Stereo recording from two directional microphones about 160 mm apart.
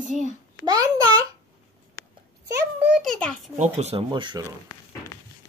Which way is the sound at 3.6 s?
45° right (ahead or behind).